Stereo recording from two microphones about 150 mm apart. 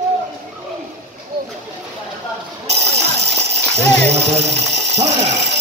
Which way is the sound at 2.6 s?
45° right (ahead or behind).